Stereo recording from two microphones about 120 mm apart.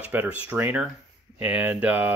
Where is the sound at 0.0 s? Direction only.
15° right (ahead or behind).